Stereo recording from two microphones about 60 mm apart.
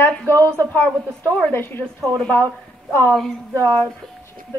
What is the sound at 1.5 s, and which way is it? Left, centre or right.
Speech, left.